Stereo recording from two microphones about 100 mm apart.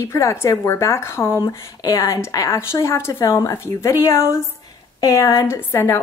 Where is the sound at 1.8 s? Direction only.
35° left (ahead or behind).